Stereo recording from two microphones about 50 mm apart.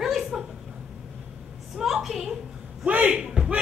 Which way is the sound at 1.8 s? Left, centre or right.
Centre.